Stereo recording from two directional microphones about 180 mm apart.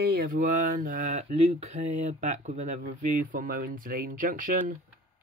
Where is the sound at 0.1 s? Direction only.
45° right (ahead or behind).